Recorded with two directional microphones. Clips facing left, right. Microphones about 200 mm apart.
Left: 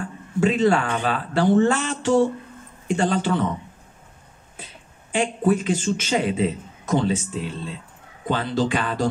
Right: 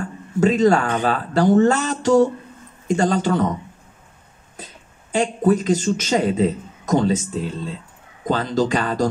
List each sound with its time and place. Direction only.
0.0 s a man's voice: 40° right (ahead or behind)
4.6 s a sound: 40° right (ahead or behind)
5.1 s a man's voice: 40° right (ahead or behind)